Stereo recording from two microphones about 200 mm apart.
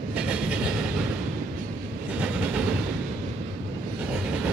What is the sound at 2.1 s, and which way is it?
Train, 5° right (ahead or behind).